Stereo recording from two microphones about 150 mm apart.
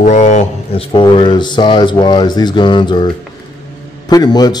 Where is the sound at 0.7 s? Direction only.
35° left (ahead or behind).